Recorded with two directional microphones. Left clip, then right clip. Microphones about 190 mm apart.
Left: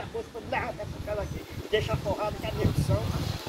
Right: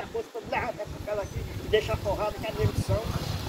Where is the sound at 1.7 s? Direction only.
5° left (ahead or behind).